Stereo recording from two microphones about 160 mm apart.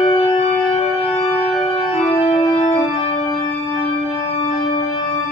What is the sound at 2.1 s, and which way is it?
Organ, 35° left (ahead or behind).